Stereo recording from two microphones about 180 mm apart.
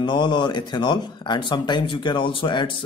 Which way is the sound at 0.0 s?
25° left (ahead or behind).